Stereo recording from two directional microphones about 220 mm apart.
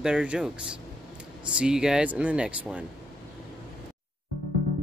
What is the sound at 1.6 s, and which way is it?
Speech, 5° right (ahead or behind).